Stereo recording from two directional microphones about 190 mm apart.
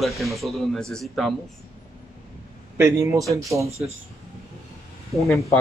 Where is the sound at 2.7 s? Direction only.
15° right (ahead or behind).